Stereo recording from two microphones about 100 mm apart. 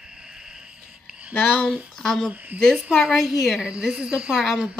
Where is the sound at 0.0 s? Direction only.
10° right (ahead or behind).